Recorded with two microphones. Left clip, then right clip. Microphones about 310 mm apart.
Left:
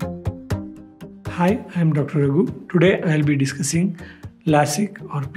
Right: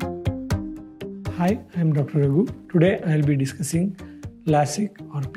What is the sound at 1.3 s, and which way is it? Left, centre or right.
Speech, right.